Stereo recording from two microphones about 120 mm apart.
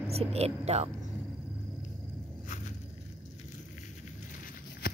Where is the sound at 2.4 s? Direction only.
90° left.